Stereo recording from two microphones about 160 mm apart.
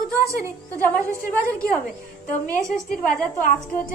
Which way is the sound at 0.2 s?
20° right (ahead or behind).